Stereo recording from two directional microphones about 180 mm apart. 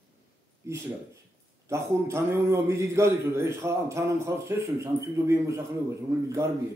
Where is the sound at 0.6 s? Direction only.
15° right (ahead or behind).